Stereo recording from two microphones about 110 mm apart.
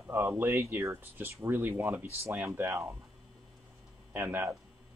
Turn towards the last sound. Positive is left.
turn(degrees=-20)  # may be behind; listen again after turning